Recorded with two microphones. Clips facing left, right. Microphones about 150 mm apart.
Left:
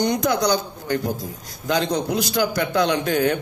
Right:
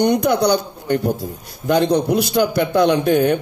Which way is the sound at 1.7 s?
60° right (ahead or behind).